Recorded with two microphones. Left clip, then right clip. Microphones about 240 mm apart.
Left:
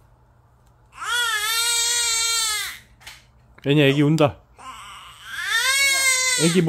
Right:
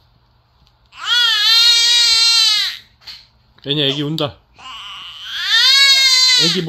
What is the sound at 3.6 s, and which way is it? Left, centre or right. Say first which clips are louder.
Groan: even; centre.